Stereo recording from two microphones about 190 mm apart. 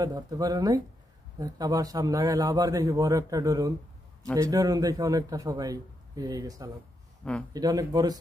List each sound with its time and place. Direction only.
0.0 s a man's voice: 20° right (ahead or behind)
7.2 s speech: 5° left (ahead or behind)
7.5 s a man's voice: 20° right (ahead or behind)